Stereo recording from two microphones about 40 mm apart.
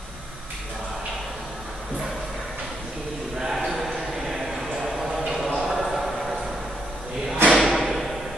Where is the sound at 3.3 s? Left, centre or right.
Centre.